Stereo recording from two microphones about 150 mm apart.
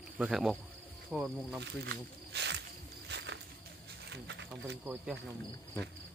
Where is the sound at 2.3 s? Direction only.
90° right.